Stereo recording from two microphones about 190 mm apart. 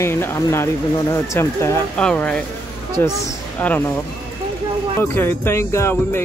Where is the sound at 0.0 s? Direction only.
15° left (ahead or behind).